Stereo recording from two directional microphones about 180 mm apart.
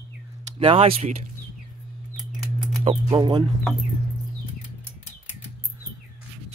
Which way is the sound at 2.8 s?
30° right (ahead or behind).